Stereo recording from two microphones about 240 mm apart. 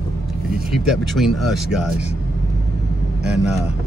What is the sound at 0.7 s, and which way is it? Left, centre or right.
Speech, centre.